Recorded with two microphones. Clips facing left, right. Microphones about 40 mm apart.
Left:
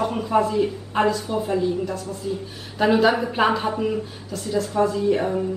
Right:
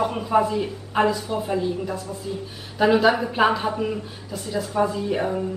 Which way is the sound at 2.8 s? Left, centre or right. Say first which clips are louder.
Even; centre.